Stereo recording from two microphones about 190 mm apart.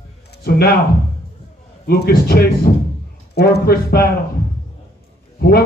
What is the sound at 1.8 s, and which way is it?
Speech, 55° left (ahead or behind).